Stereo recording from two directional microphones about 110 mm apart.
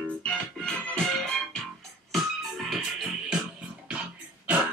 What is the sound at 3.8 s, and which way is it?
Cough, 10° right (ahead or behind).